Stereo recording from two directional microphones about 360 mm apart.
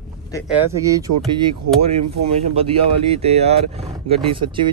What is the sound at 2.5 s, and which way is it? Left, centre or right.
Speech, centre.